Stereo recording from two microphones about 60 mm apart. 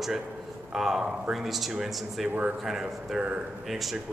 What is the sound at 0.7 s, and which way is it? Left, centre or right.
Speech, centre.